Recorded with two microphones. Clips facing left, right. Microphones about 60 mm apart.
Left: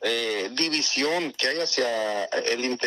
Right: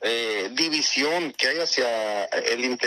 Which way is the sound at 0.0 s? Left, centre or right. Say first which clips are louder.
Right 1 dB; right.